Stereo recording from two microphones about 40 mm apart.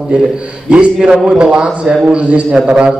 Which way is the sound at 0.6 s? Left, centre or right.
Right.